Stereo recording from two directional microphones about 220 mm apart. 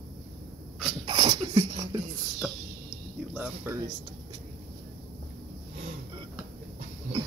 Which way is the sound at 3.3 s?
10° right (ahead or behind).